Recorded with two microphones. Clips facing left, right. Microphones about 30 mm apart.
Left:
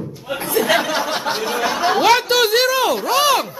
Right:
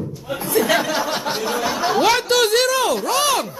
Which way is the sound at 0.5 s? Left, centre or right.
Centre.